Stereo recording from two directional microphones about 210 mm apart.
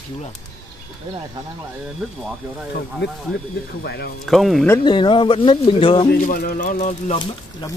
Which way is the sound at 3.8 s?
50° left (ahead or behind).